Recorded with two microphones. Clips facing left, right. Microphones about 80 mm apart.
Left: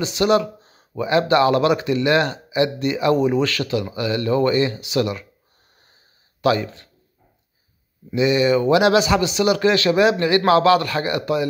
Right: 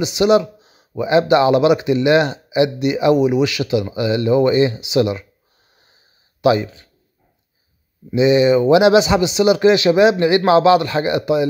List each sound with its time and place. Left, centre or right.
0.0 s speech: centre
6.4 s speech: centre
8.1 s speech: right